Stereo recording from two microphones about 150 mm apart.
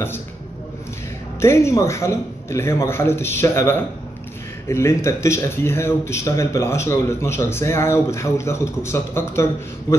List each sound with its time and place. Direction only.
1.4 s speech: 20° left (ahead or behind)